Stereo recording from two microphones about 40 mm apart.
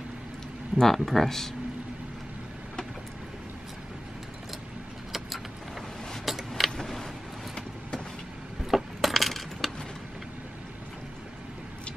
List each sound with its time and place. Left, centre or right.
0.7 s speech: centre
5.1 s vehicle: centre
6.5 s vehicle: centre
8.6 s coin: centre